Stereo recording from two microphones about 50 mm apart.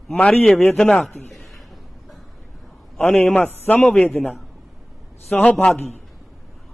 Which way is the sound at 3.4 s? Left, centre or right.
Left.